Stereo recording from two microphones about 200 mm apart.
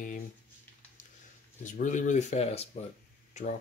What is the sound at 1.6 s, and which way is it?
Speech, 40° left (ahead or behind).